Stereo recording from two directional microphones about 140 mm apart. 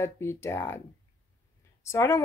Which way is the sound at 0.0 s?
20° left (ahead or behind).